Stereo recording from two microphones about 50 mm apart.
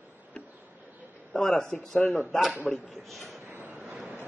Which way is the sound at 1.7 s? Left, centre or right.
Left.